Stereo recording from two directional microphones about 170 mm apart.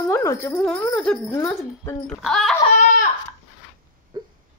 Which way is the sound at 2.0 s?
Centre (ahead or behind).